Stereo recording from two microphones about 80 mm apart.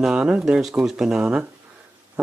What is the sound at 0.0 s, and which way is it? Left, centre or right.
Speech, centre.